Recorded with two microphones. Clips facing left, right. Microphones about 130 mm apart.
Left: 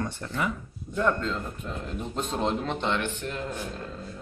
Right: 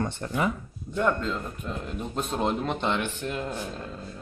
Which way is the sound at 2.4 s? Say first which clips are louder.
Right 1 dB; 10° right (ahead or behind).